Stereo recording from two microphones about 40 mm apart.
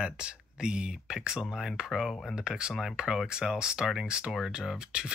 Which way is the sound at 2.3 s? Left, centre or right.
Centre.